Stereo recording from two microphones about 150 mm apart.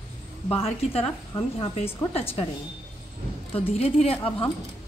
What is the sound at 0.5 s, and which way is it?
Speech, 40° left (ahead or behind).